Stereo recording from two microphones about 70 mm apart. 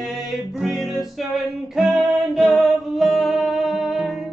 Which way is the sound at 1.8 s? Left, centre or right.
Centre.